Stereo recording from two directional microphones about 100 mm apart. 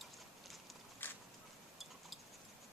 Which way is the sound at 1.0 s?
20° left (ahead or behind).